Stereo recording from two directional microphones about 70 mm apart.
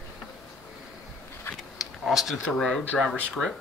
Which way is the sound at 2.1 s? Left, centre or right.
Centre.